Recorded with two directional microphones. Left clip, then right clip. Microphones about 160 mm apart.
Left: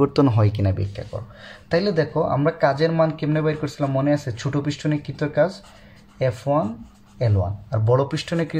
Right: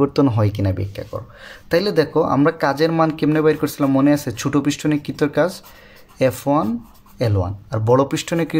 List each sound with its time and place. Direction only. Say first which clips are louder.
0.0 s speech: right 2 dB; 5° right (ahead or behind)
0.9 s speech: right 4 dB; 40° right (ahead or behind)